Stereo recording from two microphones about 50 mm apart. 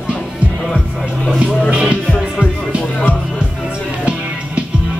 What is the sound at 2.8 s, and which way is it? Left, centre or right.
Music, left.